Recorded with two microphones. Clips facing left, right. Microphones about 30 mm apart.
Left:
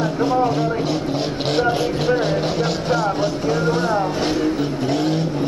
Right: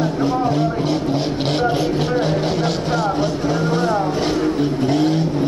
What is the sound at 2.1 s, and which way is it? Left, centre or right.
Vehicle, centre.